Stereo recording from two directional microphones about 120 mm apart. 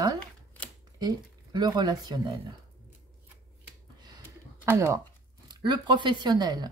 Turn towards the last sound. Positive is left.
turn(degrees=-35)  # may be behind; listen again after turning